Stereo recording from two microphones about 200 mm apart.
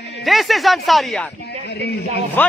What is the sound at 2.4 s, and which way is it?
Speech, 10° left (ahead or behind).